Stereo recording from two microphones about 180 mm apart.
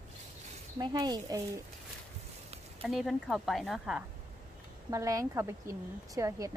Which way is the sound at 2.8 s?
Centre (ahead or behind).